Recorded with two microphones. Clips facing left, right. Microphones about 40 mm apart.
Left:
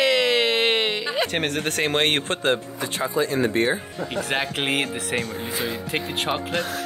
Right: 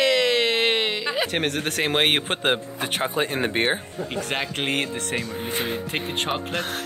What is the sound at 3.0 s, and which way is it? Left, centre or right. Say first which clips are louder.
Speech: left 3 dB; right.